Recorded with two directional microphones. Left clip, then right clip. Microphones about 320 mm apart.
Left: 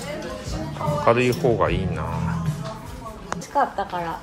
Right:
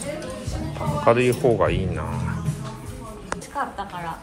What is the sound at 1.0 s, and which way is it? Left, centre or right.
Speech, centre.